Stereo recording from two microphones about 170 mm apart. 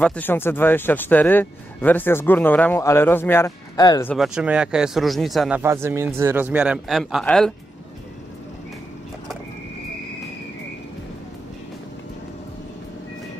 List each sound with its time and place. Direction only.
0.0 s speech: 10° left (ahead or behind)
4.2 s speech: 5° right (ahead or behind)
5.6 s a man's voice: 15° right (ahead or behind); by 7.5 s 5° left (ahead or behind)